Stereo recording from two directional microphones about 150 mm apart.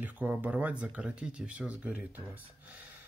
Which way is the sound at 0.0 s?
10° right (ahead or behind).